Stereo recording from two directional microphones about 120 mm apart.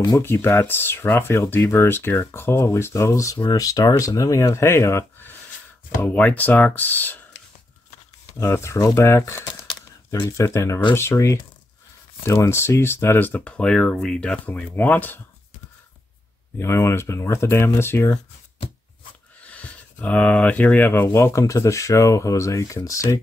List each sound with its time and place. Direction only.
0.2 s speech: 20° left (ahead or behind)
8.4 s speech: 20° left (ahead or behind)
9.5 s a sound: 30° left (ahead or behind)
10.1 s speech: 25° left (ahead or behind)
16.5 s speech: 20° left (ahead or behind)
19.4 s speech: 10° left (ahead or behind); by 23.1 s 30° left (ahead or behind)